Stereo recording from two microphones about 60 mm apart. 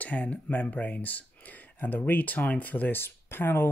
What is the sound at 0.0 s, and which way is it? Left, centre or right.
Speech, left.